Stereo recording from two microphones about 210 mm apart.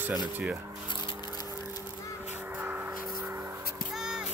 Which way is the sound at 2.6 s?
10° right (ahead or behind).